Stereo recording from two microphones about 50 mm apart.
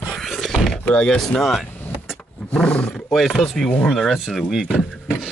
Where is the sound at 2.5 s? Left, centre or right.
Left.